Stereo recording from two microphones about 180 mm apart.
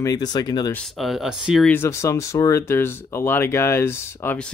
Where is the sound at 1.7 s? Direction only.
15° left (ahead or behind).